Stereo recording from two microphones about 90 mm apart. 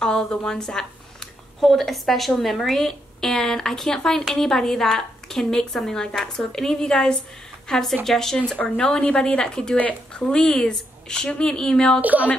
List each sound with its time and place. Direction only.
0.0 s a woman's voice: 5° left (ahead or behind)
12.0 s a woman's voice: 15° right (ahead or behind)